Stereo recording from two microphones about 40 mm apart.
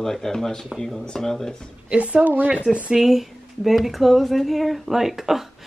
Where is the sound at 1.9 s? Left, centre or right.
Right.